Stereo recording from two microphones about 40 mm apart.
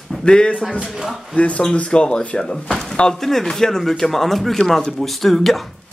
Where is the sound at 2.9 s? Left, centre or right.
Centre.